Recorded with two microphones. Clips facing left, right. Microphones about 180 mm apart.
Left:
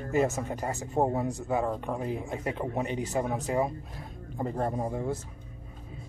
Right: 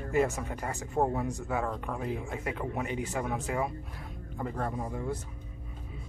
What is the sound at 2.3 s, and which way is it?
Speech, 30° left (ahead or behind).